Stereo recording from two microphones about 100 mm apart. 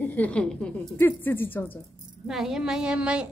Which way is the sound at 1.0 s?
20° left (ahead or behind).